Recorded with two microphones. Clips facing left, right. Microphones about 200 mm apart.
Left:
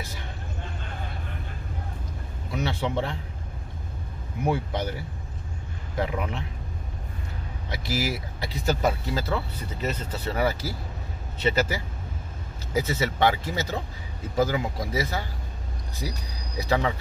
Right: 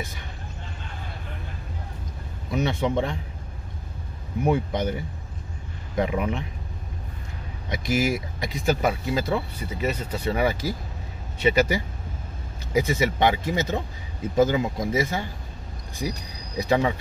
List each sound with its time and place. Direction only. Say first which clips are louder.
2.5 s speech: right 4 dB; 15° right (ahead or behind)
4.5 s speech: right 3 dB; 20° right (ahead or behind)
7.7 s speech: right 5 dB; 15° right (ahead or behind)